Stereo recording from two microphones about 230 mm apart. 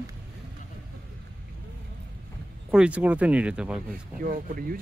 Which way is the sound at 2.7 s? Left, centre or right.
Centre.